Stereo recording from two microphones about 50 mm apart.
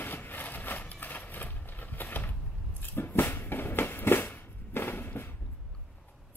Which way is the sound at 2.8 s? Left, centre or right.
Left.